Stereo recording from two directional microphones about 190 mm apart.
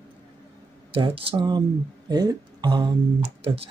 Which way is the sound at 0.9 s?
30° right (ahead or behind).